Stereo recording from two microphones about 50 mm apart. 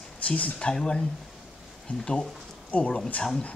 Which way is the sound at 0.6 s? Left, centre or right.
Centre.